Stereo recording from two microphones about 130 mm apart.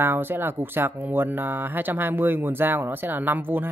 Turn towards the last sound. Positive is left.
turn(degrees=-15)  # may be behind; listen again after turning